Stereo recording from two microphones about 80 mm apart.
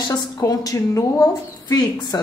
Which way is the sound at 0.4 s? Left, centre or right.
Left.